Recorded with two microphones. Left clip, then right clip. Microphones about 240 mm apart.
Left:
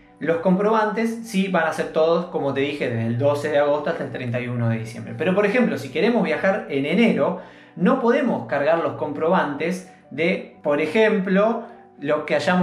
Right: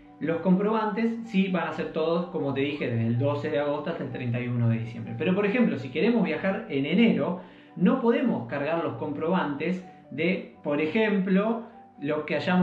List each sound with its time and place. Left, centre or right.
0.3 s speech: left